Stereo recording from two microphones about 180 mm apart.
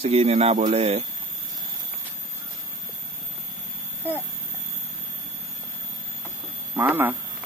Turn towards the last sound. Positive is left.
turn(degrees=-10)  # may be behind; listen again after turning